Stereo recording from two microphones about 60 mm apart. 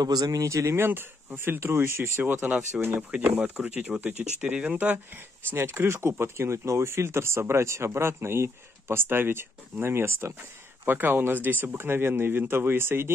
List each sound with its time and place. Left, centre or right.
0.0 s speech: right
0.8 s speech: right
1.6 s speech: right
3.0 s speech: right
3.5 s speech: centre
5.5 s speech: right